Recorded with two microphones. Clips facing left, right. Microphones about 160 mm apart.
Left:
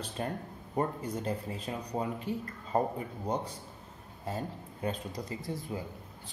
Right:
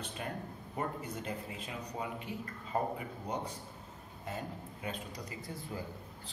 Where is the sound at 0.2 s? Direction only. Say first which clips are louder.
Left 6 dB; 35° left (ahead or behind).